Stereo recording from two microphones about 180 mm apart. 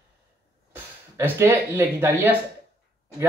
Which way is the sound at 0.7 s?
15° right (ahead or behind).